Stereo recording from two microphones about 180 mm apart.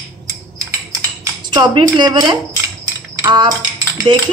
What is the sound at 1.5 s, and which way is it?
Speech, 25° right (ahead or behind).